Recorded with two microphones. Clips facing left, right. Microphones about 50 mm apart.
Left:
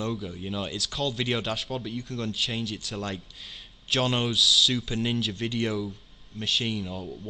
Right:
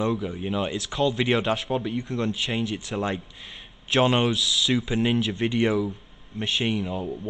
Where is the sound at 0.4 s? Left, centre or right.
Right.